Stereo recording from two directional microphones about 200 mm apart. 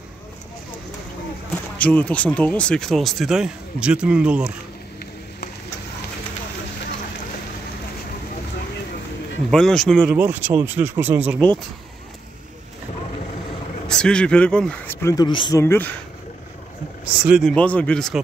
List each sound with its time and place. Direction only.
1.8 s speech: 5° left (ahead or behind)
9.5 s speech: 5° left (ahead or behind)
10.1 s speech: 10° right (ahead or behind)
13.8 s speech: 5° left (ahead or behind); by 15.6 s 20° left (ahead or behind)
15.6 s speech: 10° left (ahead or behind)
17.0 s speech: 5° right (ahead or behind)